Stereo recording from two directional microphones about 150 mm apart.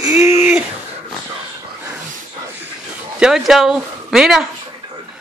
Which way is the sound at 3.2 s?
Centre (ahead or behind).